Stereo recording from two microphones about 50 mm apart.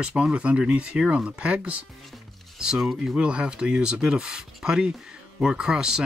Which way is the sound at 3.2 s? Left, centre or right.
Right.